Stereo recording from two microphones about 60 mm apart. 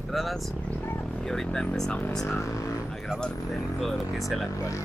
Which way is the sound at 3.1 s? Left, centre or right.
Centre.